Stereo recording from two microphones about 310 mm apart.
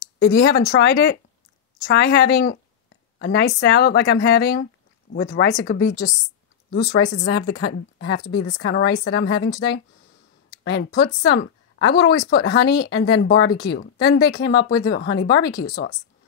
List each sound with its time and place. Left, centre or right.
0.2 s speech: left